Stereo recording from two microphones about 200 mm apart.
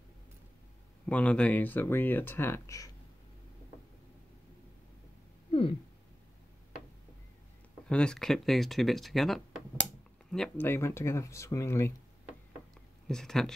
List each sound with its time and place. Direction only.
1.0 s speech: 5° left (ahead or behind)
5.5 s a sound: 25° left (ahead or behind)
7.9 s speech: 5° left (ahead or behind)
13.1 s speech: centre (ahead or behind)